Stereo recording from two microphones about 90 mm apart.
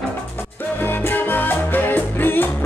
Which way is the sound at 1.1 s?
20° left (ahead or behind).